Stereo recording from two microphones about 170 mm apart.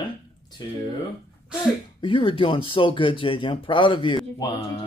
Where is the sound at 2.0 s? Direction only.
30° left (ahead or behind).